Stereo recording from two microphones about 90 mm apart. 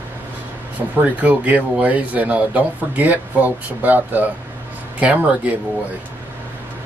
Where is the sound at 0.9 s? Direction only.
15° right (ahead or behind).